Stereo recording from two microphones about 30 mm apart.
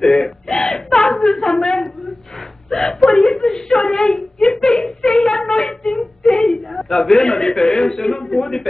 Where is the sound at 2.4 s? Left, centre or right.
Centre.